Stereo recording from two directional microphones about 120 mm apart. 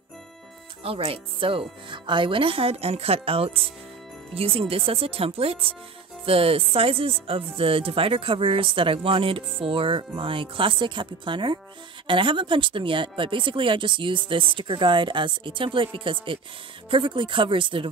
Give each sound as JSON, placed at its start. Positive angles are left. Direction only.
{"t": 0.8, "sound": "speech", "side_deg": -50}